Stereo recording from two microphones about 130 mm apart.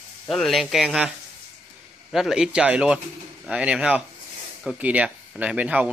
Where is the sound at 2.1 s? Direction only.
5° right (ahead or behind).